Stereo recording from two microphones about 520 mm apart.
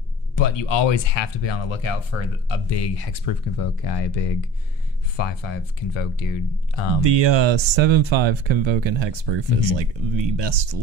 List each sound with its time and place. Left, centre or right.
0.4 s speech: left
7.0 s speech: right